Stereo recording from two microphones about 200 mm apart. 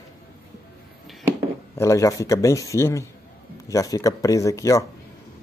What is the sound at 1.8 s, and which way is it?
Speech, 15° left (ahead or behind).